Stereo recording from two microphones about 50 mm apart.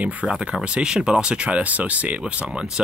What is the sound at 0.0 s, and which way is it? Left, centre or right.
Speech, right.